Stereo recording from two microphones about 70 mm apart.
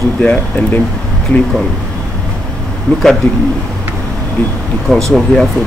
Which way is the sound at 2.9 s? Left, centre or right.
Left.